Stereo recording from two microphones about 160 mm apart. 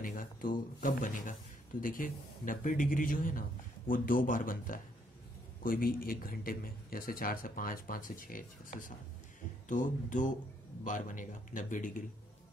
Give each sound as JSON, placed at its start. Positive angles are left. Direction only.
{"t": 0.0, "sound": "a man's voice", "side_deg": 55}